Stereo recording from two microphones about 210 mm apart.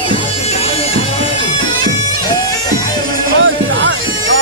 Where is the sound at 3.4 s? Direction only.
65° right (ahead or behind).